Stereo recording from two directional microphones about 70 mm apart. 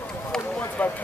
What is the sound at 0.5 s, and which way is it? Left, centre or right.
Speech, left.